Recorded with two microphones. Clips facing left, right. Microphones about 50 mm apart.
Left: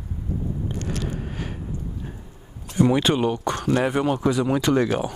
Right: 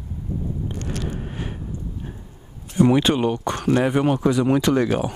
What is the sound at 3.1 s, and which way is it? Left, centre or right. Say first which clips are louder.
Speech: right 1 dB; centre.